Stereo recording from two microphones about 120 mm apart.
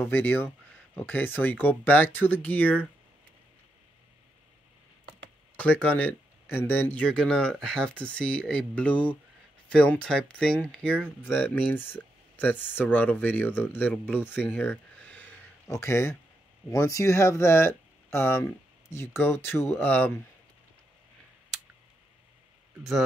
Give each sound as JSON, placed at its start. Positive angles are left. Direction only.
{"t": 0.0, "sound": "speech", "side_deg": 15}
{"t": 5.6, "sound": "speech", "side_deg": 10}